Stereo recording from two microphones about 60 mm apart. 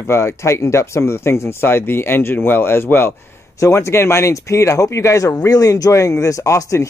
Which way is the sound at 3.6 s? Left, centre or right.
Left.